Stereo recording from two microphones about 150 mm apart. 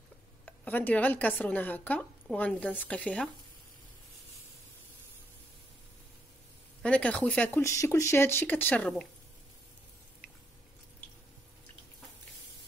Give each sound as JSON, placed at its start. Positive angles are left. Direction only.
{"t": 0.5, "sound": "speech", "side_deg": 10}
{"t": 6.8, "sound": "speech", "side_deg": 10}
{"t": 7.6, "sound": "speech", "side_deg": 20}